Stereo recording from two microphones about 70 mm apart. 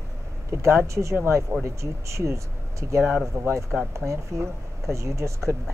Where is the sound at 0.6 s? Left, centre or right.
Right.